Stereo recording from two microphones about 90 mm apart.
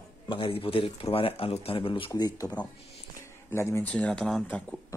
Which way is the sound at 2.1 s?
45° left (ahead or behind).